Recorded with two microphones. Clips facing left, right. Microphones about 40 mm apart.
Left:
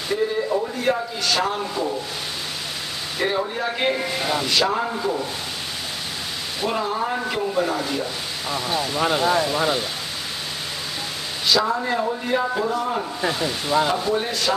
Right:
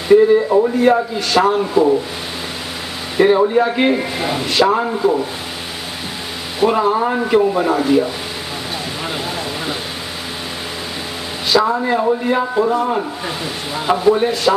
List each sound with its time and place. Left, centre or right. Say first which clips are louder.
0.5 s a man's voice: right 9 dB; centre
3.2 s speech: right 12 dB; right
6.6 s speech: right 9 dB; centre
11.4 s speech: right 5 dB; centre